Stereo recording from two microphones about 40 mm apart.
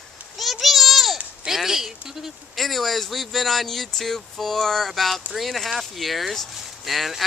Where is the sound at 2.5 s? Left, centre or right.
Centre.